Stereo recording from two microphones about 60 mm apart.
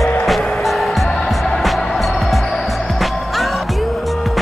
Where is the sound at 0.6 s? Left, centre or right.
Centre.